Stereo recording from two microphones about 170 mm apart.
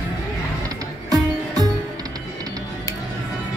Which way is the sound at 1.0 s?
20° right (ahead or behind).